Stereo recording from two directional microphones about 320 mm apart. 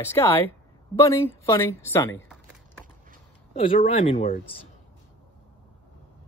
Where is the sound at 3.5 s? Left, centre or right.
Centre.